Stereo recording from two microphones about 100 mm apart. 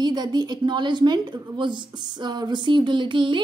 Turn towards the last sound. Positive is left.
turn(degrees=-55)  # may be behind; listen again after turning